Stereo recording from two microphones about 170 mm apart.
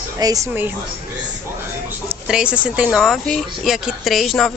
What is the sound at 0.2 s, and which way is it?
Speech, 20° right (ahead or behind).